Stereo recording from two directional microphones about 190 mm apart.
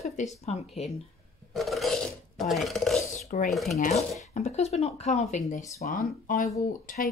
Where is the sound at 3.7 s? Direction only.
40° left (ahead or behind).